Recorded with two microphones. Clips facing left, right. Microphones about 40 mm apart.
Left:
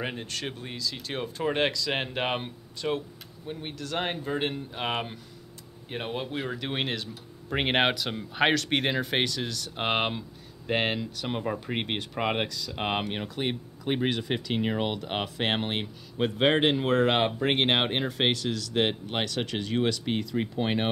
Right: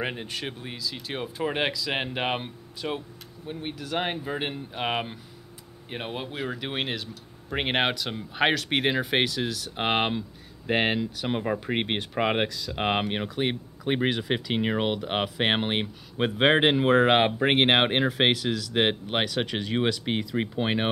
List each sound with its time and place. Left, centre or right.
0.0 s speech: centre
12.7 s speech: centre